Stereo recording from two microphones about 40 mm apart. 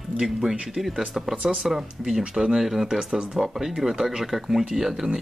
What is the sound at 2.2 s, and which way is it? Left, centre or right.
Speech, right.